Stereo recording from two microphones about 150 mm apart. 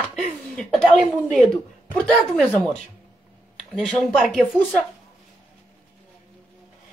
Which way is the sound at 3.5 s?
5° left (ahead or behind).